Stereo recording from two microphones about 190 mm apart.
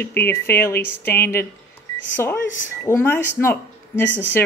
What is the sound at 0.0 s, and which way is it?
Speech, 10° left (ahead or behind).